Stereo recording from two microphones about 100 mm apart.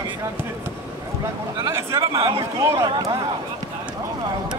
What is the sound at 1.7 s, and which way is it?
Speech, 30° right (ahead or behind).